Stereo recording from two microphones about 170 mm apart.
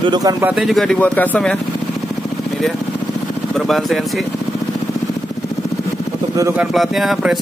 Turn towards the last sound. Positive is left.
turn(degrees=0)  # may be behind; listen again after turning